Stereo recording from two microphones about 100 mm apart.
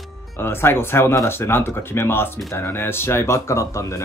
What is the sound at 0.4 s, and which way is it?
Speech, 25° left (ahead or behind).